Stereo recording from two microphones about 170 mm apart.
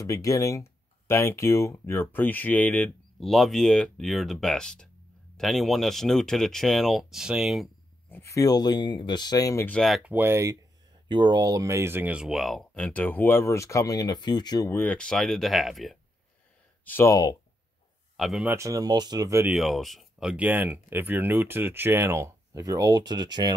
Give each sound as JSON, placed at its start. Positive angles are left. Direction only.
{"t": 0.0, "sound": "speech", "side_deg": 20}
{"t": 8.1, "sound": "speech", "side_deg": 15}
{"t": 9.7, "sound": "speech", "side_deg": 0}
{"t": 16.8, "sound": "speech", "side_deg": 15}
{"t": 18.1, "sound": "speech", "side_deg": 0}
{"t": 18.5, "sound": "speech", "side_deg": -20}
{"t": 19.5, "sound": "speech", "side_deg": 0}